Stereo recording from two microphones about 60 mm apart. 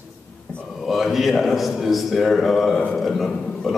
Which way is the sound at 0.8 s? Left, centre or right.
Centre.